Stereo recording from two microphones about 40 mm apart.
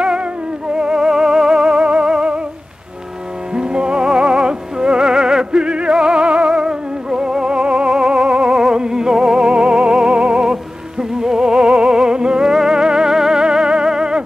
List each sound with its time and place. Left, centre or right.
0.0 s music: right
3.5 s music: right